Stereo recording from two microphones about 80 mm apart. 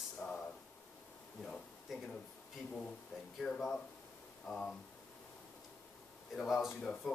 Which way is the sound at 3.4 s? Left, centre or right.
Centre.